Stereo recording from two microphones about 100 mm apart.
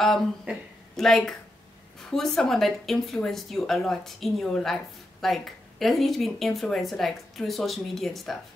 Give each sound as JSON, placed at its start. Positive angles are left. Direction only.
{"t": 0.5, "sound": "speech", "side_deg": -15}
{"t": 0.9, "sound": "speech", "side_deg": 5}